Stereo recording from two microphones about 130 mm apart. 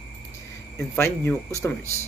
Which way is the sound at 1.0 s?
20° left (ahead or behind).